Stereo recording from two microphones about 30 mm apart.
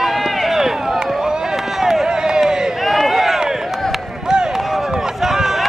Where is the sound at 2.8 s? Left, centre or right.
Centre.